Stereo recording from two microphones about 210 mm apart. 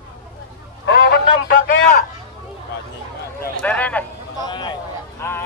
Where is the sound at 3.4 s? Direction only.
5° left (ahead or behind).